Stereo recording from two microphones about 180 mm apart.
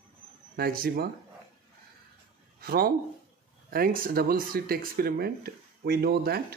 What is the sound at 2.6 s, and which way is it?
Speech, 55° right (ahead or behind).